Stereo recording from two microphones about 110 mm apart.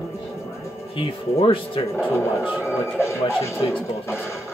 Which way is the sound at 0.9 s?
55° left (ahead or behind).